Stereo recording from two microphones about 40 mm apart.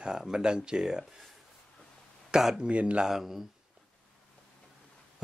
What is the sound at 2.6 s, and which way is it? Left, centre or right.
Speech, right.